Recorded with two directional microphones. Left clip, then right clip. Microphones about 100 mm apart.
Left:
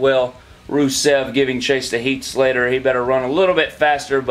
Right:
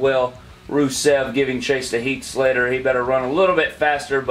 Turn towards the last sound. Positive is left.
turn(degrees=45)  # may be behind; listen again after turning